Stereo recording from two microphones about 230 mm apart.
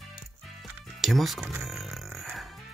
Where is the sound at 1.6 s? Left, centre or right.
Centre.